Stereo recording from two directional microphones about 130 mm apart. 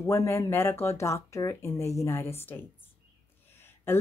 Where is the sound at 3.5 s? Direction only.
20° left (ahead or behind).